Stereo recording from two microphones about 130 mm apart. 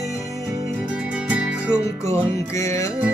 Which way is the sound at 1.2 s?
10° right (ahead or behind).